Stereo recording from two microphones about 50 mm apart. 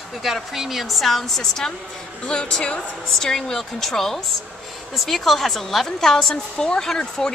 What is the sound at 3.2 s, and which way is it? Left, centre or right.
A woman's voice, centre.